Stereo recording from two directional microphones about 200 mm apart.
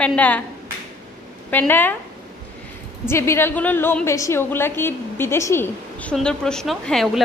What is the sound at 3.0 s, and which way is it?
A woman's voice, 15° left (ahead or behind).